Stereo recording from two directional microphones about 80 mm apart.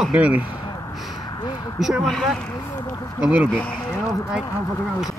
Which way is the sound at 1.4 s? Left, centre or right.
Left.